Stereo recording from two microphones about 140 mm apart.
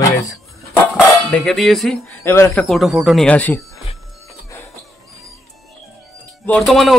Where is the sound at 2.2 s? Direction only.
20° left (ahead or behind).